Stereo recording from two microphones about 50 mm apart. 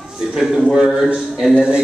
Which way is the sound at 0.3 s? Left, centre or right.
Centre.